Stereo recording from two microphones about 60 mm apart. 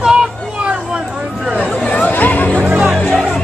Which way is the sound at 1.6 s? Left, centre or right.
Left.